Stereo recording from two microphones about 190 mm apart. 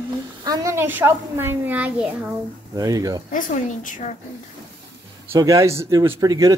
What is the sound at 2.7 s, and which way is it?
Speech, 20° right (ahead or behind).